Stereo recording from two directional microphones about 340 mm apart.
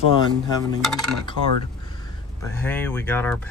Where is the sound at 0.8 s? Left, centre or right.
Centre.